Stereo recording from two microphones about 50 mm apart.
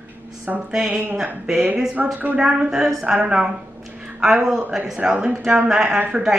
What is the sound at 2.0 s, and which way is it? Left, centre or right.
Speech, right.